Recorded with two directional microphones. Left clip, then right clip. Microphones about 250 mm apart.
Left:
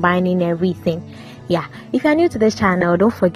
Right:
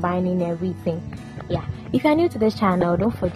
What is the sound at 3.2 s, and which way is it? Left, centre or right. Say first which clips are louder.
Speech: left 8 dB; left.